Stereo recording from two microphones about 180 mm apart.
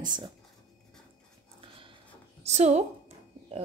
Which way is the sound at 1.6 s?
30° right (ahead or behind).